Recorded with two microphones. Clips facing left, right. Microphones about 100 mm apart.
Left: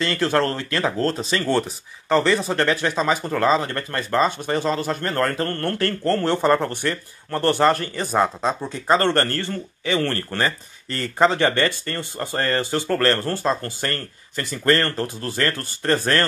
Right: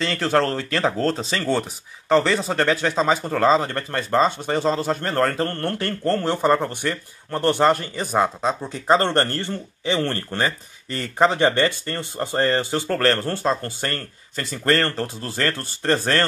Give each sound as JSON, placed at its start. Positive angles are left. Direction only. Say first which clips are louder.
{"t": 0.2, "sound": "speech", "louder": "right 1 dB", "side_deg": -25}
{"t": 1.5, "sound": "speech", "louder": "left 1 dB", "side_deg": -20}
{"t": 8.8, "sound": "speech", "louder": "even", "side_deg": -20}